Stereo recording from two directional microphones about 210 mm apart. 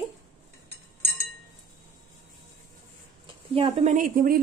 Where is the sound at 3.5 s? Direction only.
30° right (ahead or behind).